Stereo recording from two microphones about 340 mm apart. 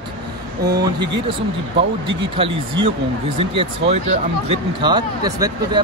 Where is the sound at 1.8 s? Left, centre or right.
Right.